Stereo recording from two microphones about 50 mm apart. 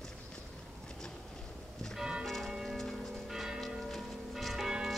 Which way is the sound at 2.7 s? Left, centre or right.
Centre.